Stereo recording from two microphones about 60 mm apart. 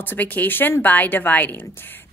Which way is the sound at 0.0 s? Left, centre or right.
Left.